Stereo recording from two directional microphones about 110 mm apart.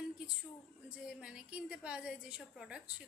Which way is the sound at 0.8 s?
10° right (ahead or behind).